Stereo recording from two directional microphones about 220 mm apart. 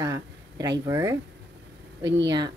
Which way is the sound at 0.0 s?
15° right (ahead or behind).